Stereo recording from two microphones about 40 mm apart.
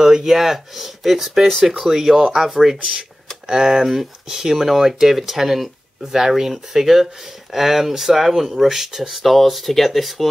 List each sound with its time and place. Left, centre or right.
0.0 s speech: centre
9.2 s speech: centre